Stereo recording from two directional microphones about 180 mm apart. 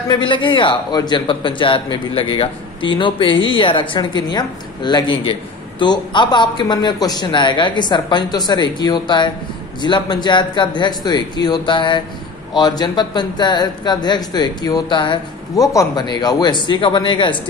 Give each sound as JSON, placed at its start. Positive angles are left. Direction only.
{"t": 0.1, "sound": "speech", "side_deg": 25}